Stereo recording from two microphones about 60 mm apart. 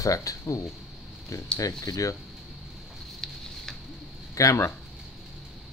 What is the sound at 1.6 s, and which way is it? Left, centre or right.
Speech, left.